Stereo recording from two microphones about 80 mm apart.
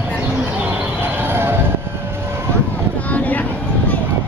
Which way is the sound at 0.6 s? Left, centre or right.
Right.